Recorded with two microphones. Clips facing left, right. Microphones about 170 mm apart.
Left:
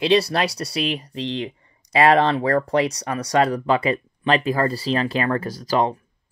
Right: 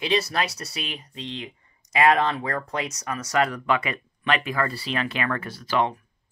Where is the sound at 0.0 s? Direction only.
30° left (ahead or behind).